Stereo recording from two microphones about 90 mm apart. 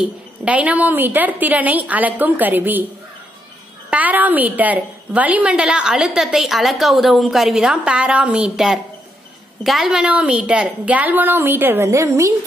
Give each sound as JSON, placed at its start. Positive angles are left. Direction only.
{"t": 0.5, "sound": "a woman's voice", "side_deg": -15}
{"t": 3.9, "sound": "a woman's voice", "side_deg": -20}